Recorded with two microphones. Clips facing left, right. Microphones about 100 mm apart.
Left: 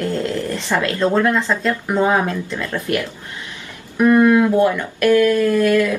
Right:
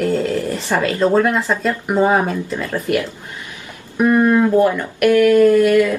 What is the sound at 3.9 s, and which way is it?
Speech, 15° right (ahead or behind).